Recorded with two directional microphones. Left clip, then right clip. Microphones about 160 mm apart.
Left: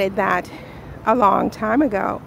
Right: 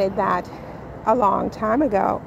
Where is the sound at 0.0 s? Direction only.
30° left (ahead or behind).